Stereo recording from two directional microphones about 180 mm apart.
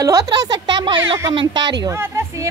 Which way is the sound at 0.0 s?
20° right (ahead or behind).